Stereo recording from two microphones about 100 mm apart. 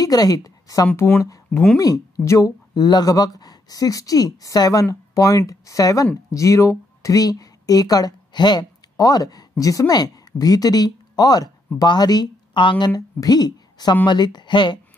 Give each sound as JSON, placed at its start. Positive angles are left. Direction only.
{"t": 0.0, "sound": "a woman's voice", "side_deg": 40}
{"t": 0.9, "sound": "speech", "side_deg": 20}
{"t": 1.8, "sound": "speech", "side_deg": 35}